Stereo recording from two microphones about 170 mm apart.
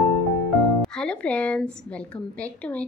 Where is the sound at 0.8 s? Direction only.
5° left (ahead or behind).